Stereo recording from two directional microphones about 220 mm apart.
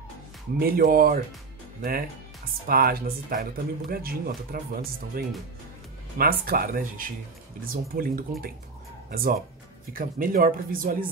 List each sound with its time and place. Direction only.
0.6 s speech: 40° right (ahead or behind)